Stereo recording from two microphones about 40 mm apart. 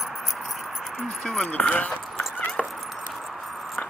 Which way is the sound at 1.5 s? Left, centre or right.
Left.